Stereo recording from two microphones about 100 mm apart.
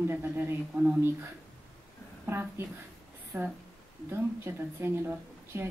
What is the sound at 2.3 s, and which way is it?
Speech, 25° right (ahead or behind).